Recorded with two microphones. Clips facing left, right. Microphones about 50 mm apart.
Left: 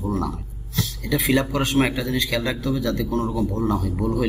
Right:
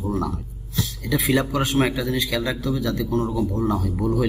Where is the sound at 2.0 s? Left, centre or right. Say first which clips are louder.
Even; centre.